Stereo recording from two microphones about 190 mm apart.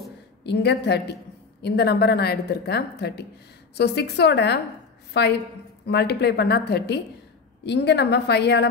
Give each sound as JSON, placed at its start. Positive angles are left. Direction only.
{"t": 0.4, "sound": "a woman's voice", "side_deg": 60}